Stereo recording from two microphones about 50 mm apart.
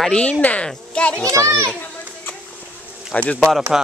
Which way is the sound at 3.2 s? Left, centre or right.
Left.